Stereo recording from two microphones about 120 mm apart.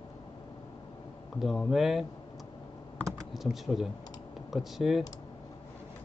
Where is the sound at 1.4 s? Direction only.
Centre (ahead or behind).